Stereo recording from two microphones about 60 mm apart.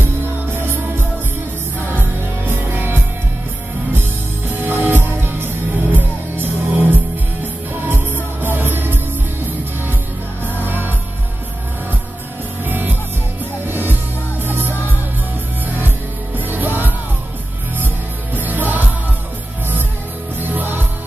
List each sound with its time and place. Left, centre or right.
0.6 s music: right
4.5 s music: right
8.4 s music: right
10.6 s music: right
12.6 s music: right
16.3 s music: right
18.3 s music: right
20.3 s music: right